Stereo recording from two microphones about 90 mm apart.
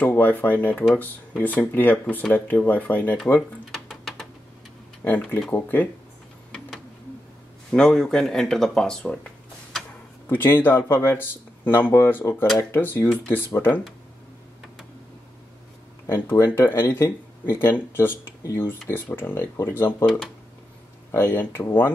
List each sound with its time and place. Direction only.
0.0 s speech: 20° left (ahead or behind)
3.7 s a sound: 5° left (ahead or behind)
5.0 s speech: 20° left (ahead or behind)
7.7 s speech: 5° left (ahead or behind)
10.2 s speech: 25° left (ahead or behind)
16.1 s speech: 30° left (ahead or behind)
18.4 s speech: 35° left (ahead or behind)
18.7 s speech: 25° left (ahead or behind)
21.1 s speech: 25° left (ahead or behind)